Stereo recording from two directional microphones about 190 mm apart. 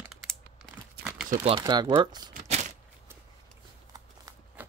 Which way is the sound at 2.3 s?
40° right (ahead or behind).